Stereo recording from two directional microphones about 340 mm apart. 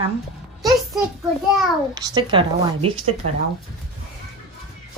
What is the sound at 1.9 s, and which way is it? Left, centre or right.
Speech, centre.